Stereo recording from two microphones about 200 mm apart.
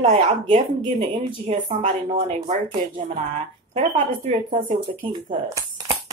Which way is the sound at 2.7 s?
25° right (ahead or behind).